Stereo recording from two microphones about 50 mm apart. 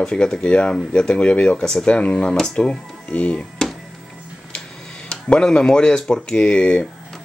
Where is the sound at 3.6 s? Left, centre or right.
Centre.